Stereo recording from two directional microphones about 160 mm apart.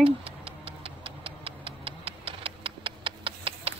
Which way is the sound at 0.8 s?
35° right (ahead or behind).